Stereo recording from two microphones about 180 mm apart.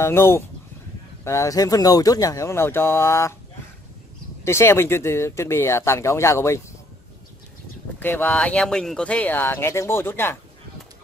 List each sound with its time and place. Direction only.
0.0 s speech: 15° left (ahead or behind)
4.5 s speech: 15° left (ahead or behind)
8.0 s speech: 10° left (ahead or behind)